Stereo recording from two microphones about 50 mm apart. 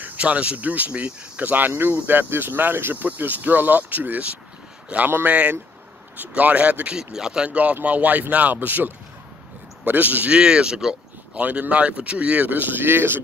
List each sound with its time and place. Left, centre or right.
0.0 s speech: right
7.0 s speech: centre
7.4 s speech: right